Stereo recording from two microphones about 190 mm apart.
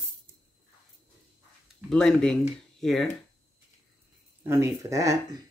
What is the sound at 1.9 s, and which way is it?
Speech, 5° left (ahead or behind).